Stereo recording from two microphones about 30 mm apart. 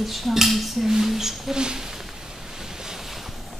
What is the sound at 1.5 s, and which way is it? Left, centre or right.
Speech, right.